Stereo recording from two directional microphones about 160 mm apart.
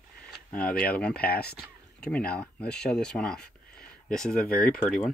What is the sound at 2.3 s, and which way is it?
Speech, 5° left (ahead or behind).